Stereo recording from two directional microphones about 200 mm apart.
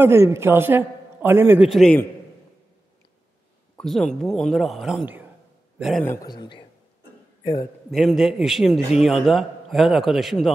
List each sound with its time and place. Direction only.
0.0 s a man's voice: 15° right (ahead or behind)
1.7 s a man's voice: centre (ahead or behind)
3.7 s a man's voice: centre (ahead or behind)
6.0 s a man's voice: 15° left (ahead or behind)
7.9 s a man's voice: centre (ahead or behind)